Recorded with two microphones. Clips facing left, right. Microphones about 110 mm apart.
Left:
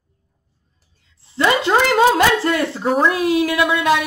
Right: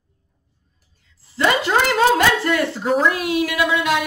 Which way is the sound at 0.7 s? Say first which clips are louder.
Even; 25° left (ahead or behind).